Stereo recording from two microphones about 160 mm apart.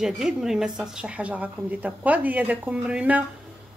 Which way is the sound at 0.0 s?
5° right (ahead or behind).